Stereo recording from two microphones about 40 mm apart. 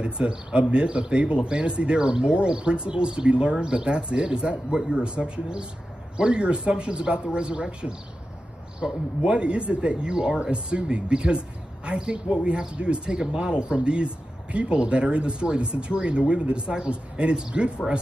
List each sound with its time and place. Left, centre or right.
0.0 s speech: right